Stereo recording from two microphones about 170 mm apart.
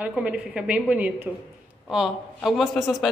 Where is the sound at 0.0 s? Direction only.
5° right (ahead or behind).